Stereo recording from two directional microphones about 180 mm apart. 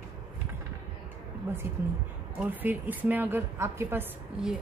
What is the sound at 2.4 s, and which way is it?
A woman's voice, 10° right (ahead or behind).